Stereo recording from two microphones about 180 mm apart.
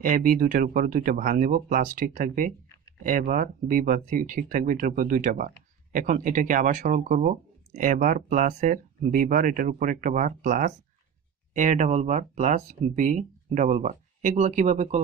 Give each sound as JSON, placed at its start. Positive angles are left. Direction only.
{"t": 0.0, "sound": "speech", "side_deg": -50}